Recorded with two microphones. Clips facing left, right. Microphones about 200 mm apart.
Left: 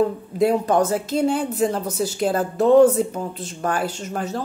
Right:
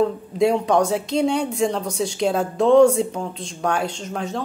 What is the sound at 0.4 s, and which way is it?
Speech, 5° left (ahead or behind).